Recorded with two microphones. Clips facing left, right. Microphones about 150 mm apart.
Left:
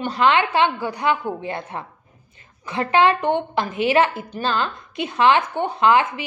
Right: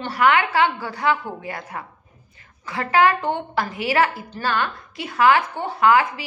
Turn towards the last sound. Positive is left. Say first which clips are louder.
# even
turn(degrees=20)  # may be behind; listen again after turning